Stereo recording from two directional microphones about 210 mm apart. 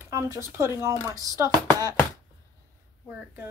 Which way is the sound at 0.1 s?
15° right (ahead or behind).